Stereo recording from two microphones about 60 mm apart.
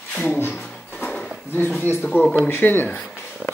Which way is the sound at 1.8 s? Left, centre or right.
Left.